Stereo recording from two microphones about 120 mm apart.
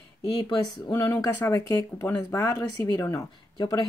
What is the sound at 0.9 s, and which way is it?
Speech, 30° left (ahead or behind).